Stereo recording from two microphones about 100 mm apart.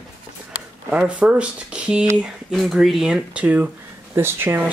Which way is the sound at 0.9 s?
10° right (ahead or behind).